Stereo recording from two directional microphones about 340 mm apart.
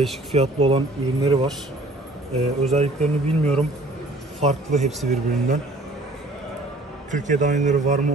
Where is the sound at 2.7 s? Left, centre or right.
Centre.